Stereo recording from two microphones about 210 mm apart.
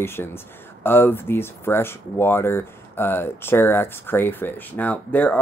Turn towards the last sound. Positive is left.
turn(degrees=5)  # may be behind; listen again after turning